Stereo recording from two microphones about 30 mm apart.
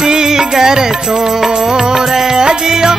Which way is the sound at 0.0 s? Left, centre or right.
Right.